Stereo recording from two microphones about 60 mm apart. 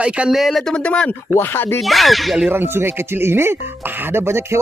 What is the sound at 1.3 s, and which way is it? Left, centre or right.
Speech, left.